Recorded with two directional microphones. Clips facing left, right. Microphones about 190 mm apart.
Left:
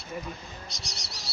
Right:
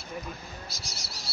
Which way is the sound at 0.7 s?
Centre (ahead or behind).